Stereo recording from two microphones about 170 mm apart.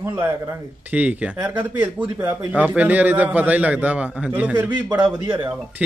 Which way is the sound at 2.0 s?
25° right (ahead or behind).